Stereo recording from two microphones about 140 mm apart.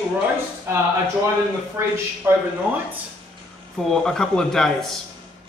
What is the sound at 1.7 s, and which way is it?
Speech, 15° right (ahead or behind).